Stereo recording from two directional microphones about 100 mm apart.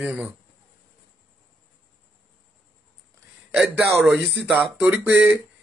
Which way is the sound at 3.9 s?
20° right (ahead or behind).